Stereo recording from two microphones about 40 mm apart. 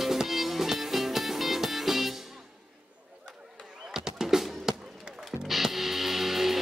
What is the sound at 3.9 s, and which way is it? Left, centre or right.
Music, centre.